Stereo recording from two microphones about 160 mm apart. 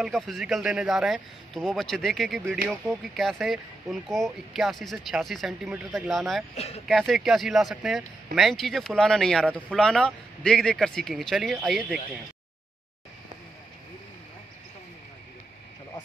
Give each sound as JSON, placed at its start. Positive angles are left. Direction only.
{"t": 0.0, "sound": "speech", "side_deg": 0}
{"t": 6.5, "sound": "speech", "side_deg": 40}
{"t": 6.9, "sound": "speech", "side_deg": 0}